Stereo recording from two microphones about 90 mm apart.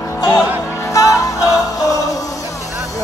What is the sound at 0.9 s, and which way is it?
Music, 40° left (ahead or behind).